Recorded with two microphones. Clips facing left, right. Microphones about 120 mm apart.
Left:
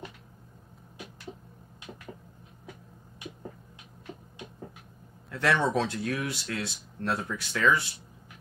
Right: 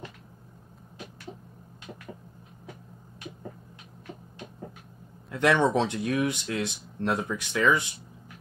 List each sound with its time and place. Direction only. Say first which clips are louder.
5.3 s speech: right 3 dB; 20° right (ahead or behind)